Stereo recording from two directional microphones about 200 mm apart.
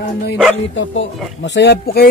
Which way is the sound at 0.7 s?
65° left (ahead or behind).